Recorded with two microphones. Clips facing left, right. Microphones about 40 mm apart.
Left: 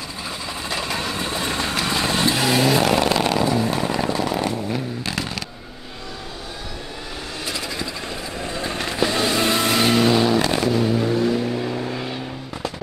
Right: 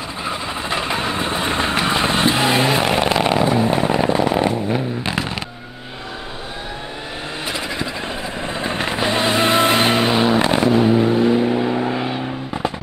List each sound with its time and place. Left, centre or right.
0.3 s vehicle: right
7.4 s vehicle: right